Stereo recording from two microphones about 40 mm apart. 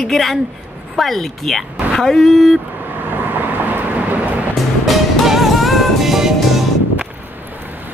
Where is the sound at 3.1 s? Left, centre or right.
Right.